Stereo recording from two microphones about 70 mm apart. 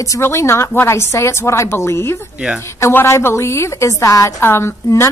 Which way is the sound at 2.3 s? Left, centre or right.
Centre.